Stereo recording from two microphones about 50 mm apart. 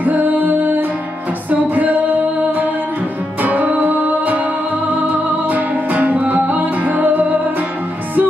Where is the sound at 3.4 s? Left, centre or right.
Right.